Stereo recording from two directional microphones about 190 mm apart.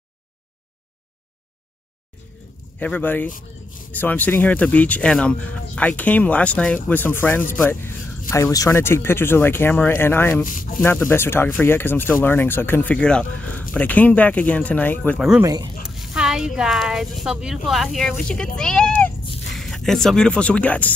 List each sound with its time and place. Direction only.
2.8 s speech: 10° left (ahead or behind)
10.4 s speech: 45° left (ahead or behind)
10.8 s speech: 10° left (ahead or behind)
15.4 s speech: 20° right (ahead or behind)
15.8 s a sound: centre (ahead or behind)
17.6 s speech: centre (ahead or behind)